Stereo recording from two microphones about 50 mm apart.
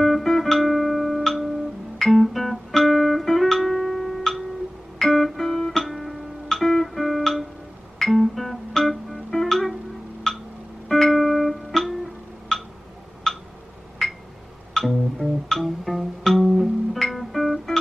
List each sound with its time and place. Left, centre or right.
0.0 s guitar: centre
10.3 s a sound: centre
10.9 s music: centre
12.5 s tick: centre
13.3 s a sound: centre
14.7 s music: centre